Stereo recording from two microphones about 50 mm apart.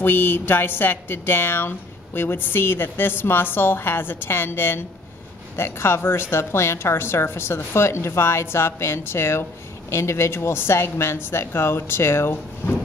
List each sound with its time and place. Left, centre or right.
0.0 s a woman's voice: left